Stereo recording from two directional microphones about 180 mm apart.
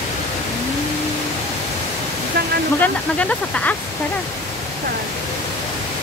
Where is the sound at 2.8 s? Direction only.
5° left (ahead or behind).